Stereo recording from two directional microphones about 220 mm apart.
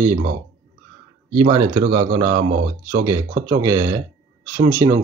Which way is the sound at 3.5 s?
15° right (ahead or behind).